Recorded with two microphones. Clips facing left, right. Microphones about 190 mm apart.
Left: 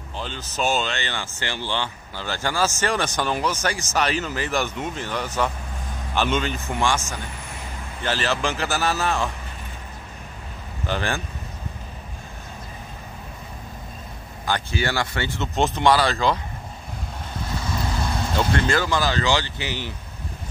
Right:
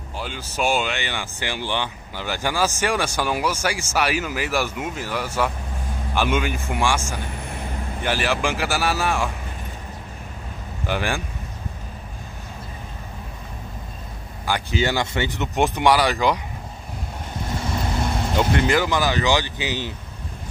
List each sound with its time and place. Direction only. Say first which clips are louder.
0.2 s speech: right 1 dB; 10° right (ahead or behind)
10.9 s speech: right 1 dB; 10° right (ahead or behind)
14.4 s speech: right 2 dB; 15° right (ahead or behind)
17.6 s speech: right 2 dB; 25° right (ahead or behind)